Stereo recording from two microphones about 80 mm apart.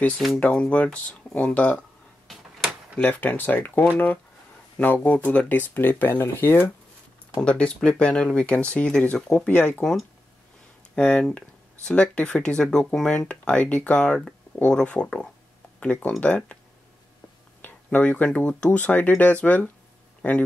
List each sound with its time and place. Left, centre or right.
0.4 s speech: centre
3.0 s speech: left
7.4 s speech: centre
9.5 s speech: left
11.0 s speech: centre
17.6 s speech: left
20.2 s a sound: centre